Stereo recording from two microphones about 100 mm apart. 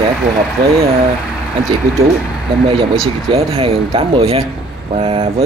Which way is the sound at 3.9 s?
70° right (ahead or behind).